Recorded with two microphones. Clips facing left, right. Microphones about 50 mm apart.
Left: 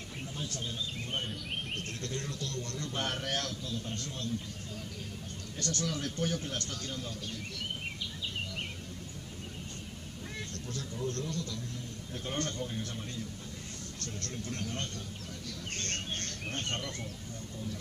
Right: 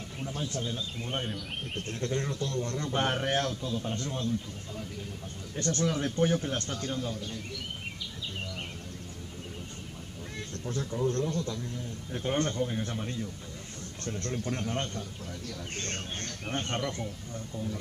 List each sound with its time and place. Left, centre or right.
0.3 s a sound: centre
0.6 s speech: centre
1.9 s a man's voice: right
5.6 s a man's voice: right
10.7 s a man's voice: right